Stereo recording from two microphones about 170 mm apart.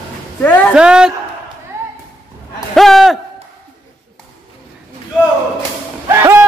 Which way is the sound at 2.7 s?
Centre (ahead or behind).